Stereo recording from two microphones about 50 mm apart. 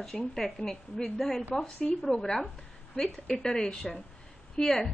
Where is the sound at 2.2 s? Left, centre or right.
Centre.